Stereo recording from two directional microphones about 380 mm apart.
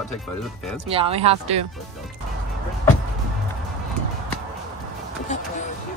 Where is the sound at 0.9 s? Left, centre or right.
Centre.